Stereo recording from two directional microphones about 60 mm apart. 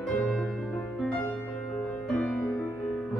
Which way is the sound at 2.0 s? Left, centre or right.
Centre.